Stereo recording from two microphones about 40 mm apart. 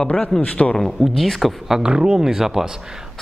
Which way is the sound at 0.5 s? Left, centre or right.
Left.